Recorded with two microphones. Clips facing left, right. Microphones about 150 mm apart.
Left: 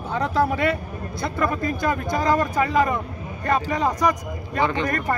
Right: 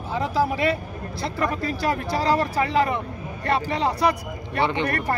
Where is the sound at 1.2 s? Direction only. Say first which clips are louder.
Left 2 dB; 35° right (ahead or behind).